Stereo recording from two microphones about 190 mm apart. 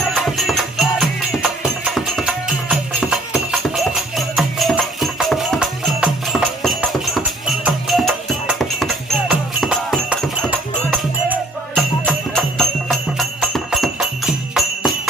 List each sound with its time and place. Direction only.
0.1 s music: centre (ahead or behind)